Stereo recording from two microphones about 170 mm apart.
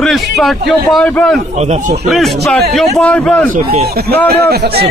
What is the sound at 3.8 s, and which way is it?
Speech, 65° right (ahead or behind).